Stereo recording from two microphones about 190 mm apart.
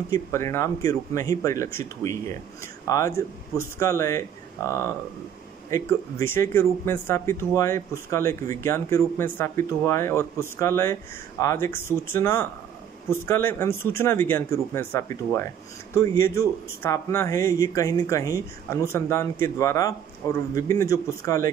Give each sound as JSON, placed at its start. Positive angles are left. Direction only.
{"t": 0.1, "sound": "speech", "side_deg": 15}